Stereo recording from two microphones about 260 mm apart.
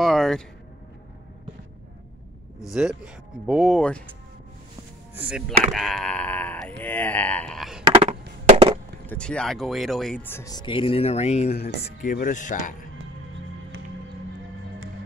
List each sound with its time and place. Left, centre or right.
0.0 s a sound: centre
2.7 s speech: centre
5.1 s speech: centre
7.8 s chop: right
9.0 s speech: centre; by 12.7 s left